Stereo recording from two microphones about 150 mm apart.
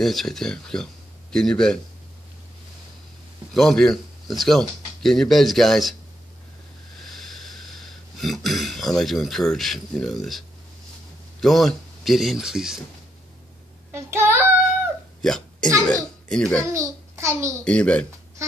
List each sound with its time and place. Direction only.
0.0 s speech: centre (ahead or behind)
3.5 s speech: 5° left (ahead or behind)
7.2 s speech: centre (ahead or behind)
11.4 s speech: centre (ahead or behind)
13.9 s child singing: 15° right (ahead or behind)
15.2 s speech: 5° left (ahead or behind)
16.7 s a child's voice: 20° right (ahead or behind)
17.6 s speech: 10° left (ahead or behind)